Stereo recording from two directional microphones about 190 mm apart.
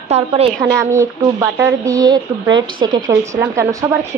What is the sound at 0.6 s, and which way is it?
A woman's voice, 15° right (ahead or behind).